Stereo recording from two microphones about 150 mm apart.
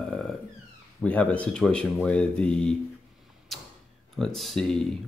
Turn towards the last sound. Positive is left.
turn(degrees=5)  # may be behind; listen again after turning